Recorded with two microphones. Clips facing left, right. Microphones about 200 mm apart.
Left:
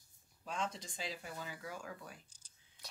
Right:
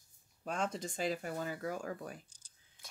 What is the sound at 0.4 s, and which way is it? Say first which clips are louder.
Speech: right 5 dB; 50° right (ahead or behind).